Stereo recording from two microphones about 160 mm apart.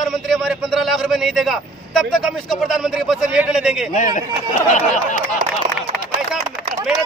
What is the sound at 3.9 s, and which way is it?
Speech, 50° left (ahead or behind).